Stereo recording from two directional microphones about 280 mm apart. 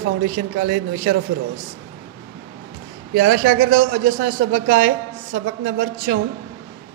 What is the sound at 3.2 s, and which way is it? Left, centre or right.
A woman's voice, right.